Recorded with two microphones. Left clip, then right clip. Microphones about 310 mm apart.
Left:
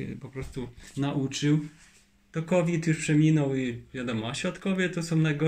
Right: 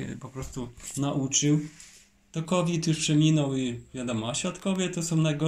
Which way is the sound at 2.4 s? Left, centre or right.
Left.